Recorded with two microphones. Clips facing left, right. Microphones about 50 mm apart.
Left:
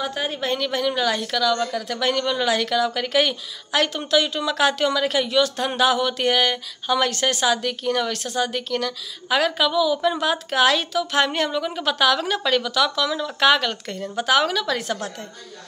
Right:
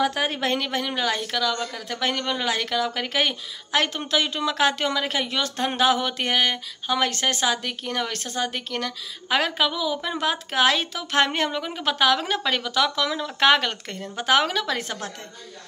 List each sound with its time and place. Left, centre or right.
0.0 s a woman's voice: right
0.6 s speech: right